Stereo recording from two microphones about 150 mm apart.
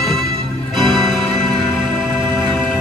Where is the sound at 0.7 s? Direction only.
30° right (ahead or behind).